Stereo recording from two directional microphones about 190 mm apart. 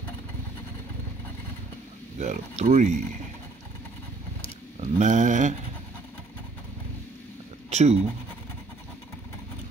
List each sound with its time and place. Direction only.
2.1 s speech: 40° right (ahead or behind)
4.7 s speech: 40° right (ahead or behind)
7.7 s speech: 35° right (ahead or behind)